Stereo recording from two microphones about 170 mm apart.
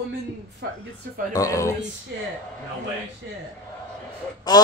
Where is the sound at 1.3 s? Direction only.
20° left (ahead or behind).